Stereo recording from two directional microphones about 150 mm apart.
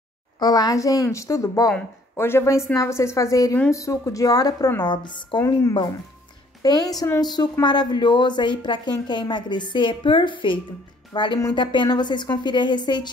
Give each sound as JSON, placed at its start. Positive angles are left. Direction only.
{"t": 0.4, "sound": "a woman's voice", "side_deg": 25}
{"t": 6.6, "sound": "a woman's voice", "side_deg": 25}